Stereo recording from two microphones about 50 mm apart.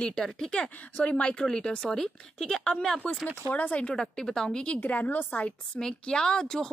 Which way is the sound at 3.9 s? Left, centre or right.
Centre.